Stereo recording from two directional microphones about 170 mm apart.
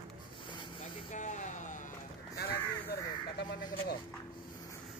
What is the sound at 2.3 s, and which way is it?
Crow, 70° left (ahead or behind).